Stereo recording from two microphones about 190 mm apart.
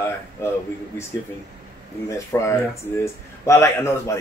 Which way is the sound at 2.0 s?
15° left (ahead or behind).